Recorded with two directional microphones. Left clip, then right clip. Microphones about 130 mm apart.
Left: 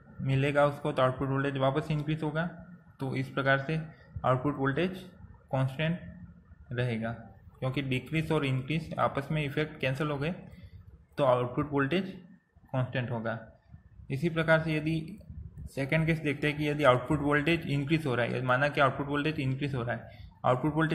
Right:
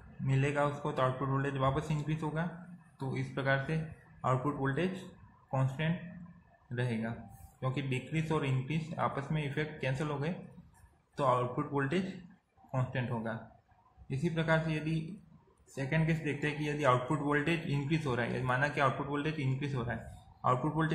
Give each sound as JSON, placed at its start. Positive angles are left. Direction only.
{"t": 0.3, "sound": "a man's voice", "side_deg": 25}